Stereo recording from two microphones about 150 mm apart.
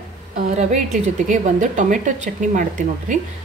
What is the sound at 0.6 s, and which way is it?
Speech, 50° right (ahead or behind).